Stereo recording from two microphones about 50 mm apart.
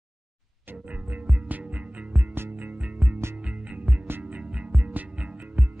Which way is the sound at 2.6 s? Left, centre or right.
Right.